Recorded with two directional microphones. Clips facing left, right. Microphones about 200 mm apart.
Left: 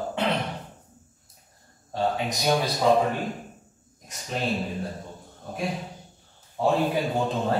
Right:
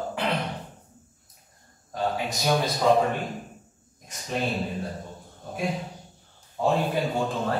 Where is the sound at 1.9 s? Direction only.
30° left (ahead or behind).